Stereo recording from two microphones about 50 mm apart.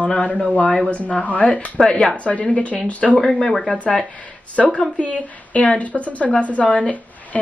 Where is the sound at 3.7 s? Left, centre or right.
Left.